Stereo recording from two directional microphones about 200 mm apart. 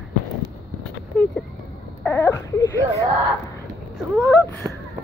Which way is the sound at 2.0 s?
10° left (ahead or behind).